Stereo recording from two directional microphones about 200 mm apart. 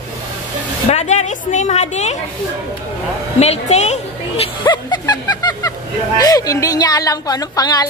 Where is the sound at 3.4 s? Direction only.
35° left (ahead or behind).